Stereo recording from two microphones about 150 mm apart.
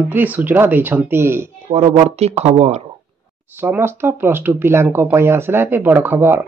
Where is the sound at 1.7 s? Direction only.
45° right (ahead or behind).